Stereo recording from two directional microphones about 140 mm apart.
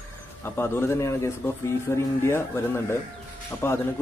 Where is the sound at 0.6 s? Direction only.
15° left (ahead or behind).